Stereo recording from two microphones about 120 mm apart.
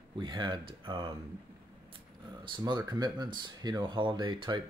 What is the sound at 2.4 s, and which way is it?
Speech, 35° right (ahead or behind).